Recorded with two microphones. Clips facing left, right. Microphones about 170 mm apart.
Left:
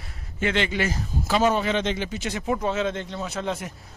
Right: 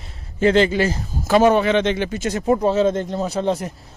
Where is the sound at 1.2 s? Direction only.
55° right (ahead or behind); by 3.7 s 35° right (ahead or behind).